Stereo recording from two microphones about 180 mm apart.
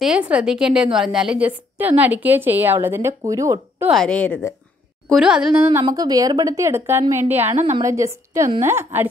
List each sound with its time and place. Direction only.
0.0 s a woman's voice: 5° right (ahead or behind)
3.8 s speech: centre (ahead or behind)
5.1 s a woman's voice: 5° right (ahead or behind)
5.8 s a woman's voice: 20° right (ahead or behind)
7.5 s a woman's voice: 40° right (ahead or behind)
7.8 s a woman's voice: 15° right (ahead or behind)